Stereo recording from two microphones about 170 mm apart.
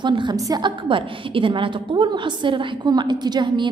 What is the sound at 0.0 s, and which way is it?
A woman's voice, 25° right (ahead or behind).